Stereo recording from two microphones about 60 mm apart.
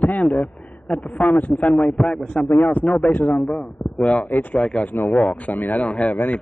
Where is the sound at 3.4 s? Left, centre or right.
Centre.